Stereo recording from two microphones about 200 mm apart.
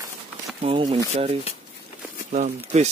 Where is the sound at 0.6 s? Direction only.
30° right (ahead or behind).